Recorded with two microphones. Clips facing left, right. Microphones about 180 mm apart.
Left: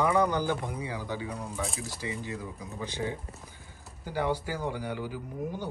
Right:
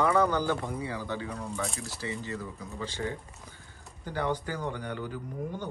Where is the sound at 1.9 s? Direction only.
15° left (ahead or behind).